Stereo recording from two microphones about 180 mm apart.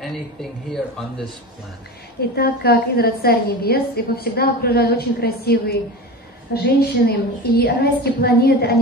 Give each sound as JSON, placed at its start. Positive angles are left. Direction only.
{"t": 0.0, "sound": "a man's voice", "side_deg": 0}
{"t": 2.3, "sound": "a woman's voice", "side_deg": 60}